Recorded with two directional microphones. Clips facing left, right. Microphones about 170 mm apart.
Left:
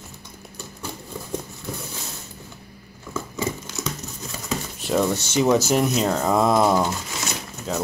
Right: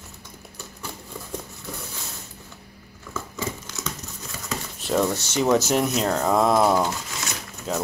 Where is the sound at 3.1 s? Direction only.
10° left (ahead or behind).